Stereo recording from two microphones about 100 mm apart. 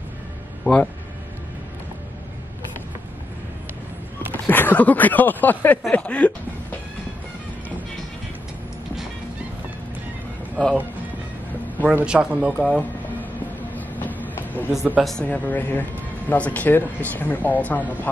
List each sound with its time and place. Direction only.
0.7 s speech: 20° left (ahead or behind)
4.3 s speech: 20° left (ahead or behind)
10.6 s speech: 10° left (ahead or behind)
11.8 s speech: 15° right (ahead or behind)
13.7 s train: 15° left (ahead or behind)
14.3 s a sound: 20° left (ahead or behind)
15.0 s speech: centre (ahead or behind)
15.2 s speech: 15° left (ahead or behind)